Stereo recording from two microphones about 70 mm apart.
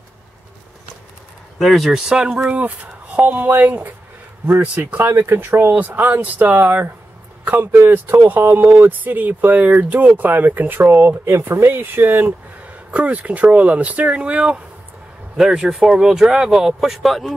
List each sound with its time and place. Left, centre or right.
1.6 s speech: centre